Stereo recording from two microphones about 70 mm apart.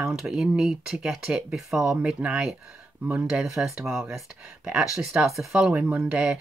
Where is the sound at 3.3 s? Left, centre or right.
Centre.